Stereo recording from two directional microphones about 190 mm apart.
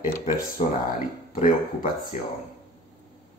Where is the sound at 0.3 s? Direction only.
45° left (ahead or behind).